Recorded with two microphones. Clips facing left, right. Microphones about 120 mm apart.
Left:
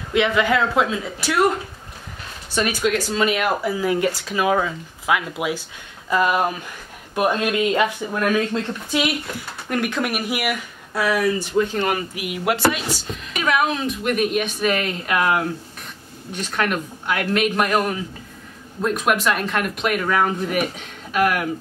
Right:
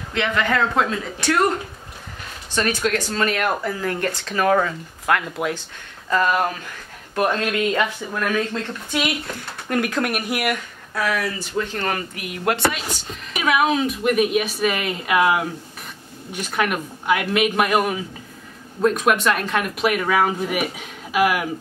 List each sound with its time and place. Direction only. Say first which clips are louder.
0.1 s speech: left 3 dB; 10° left (ahead or behind)
2.5 s speech: left 1 dB; 10° left (ahead or behind)
9.0 s speech: left 1 dB; centre (ahead or behind)
11.0 s speech: left 4 dB; 15° left (ahead or behind)
13.3 s speech: right 2 dB; 5° right (ahead or behind)